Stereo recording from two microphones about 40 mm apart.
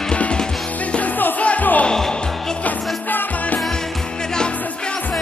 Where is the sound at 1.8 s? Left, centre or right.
Centre.